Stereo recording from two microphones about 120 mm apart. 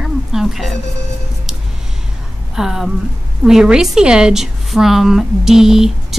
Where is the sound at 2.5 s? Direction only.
5° right (ahead or behind).